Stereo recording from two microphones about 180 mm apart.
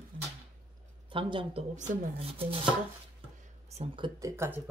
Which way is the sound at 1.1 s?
30° right (ahead or behind).